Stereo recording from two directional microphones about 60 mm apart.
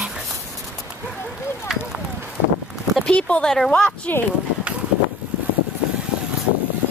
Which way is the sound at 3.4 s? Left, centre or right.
Centre.